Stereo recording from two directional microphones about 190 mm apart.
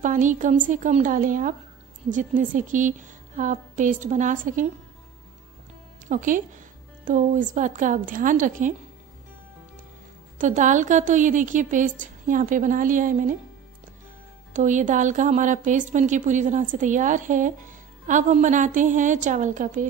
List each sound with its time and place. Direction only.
0.0 s a woman's voice: 40° right (ahead or behind)
6.0 s a woman's voice: 45° right (ahead or behind)
10.4 s a woman's voice: 40° right (ahead or behind)
14.5 s a woman's voice: 40° right (ahead or behind)